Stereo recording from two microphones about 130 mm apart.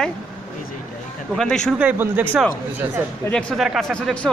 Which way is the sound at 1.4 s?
5° left (ahead or behind).